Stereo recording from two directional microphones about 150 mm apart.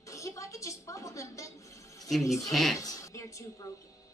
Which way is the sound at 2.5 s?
Centre (ahead or behind).